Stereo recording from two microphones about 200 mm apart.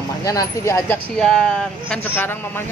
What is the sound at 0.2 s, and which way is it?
Speech, 15° left (ahead or behind).